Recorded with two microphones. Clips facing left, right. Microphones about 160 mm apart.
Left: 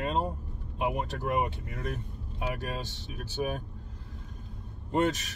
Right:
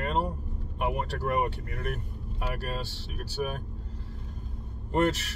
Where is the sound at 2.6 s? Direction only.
20° left (ahead or behind).